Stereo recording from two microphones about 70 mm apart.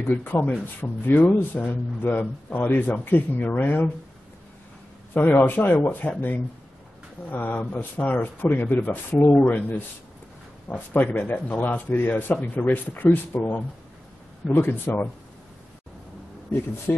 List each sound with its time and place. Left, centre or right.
0.0 s speech: left
5.1 s a man's voice: left
16.5 s speech: left